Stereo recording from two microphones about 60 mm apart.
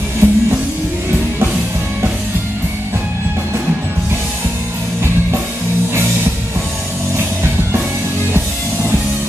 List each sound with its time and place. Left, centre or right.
0.2 s music: right